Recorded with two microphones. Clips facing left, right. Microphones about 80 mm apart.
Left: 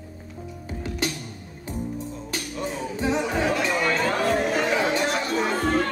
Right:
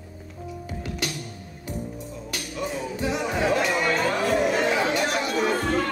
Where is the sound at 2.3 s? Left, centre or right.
Left.